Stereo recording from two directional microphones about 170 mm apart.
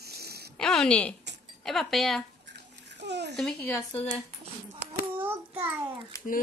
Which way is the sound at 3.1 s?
80° right.